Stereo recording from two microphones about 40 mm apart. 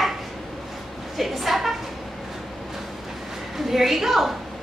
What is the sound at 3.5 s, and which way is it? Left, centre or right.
Speech, centre.